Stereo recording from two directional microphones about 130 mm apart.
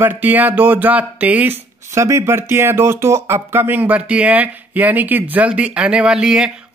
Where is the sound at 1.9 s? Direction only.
20° right (ahead or behind).